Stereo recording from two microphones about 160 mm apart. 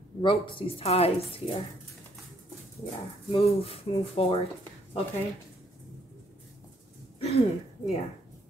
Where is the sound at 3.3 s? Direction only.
35° left (ahead or behind).